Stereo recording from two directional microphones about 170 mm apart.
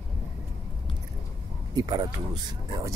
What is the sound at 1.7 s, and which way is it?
Speech, 25° right (ahead or behind).